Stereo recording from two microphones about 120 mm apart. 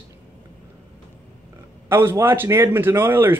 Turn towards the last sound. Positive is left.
turn(degrees=-20)  # may be behind; listen again after turning